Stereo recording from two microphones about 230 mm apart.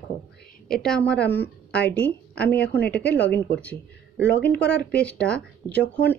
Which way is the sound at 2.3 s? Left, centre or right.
Left.